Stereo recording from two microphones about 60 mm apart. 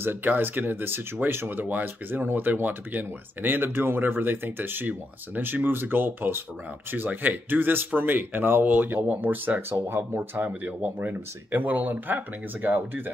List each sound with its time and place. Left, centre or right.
0.0 s speech: right
9.7 s speech: right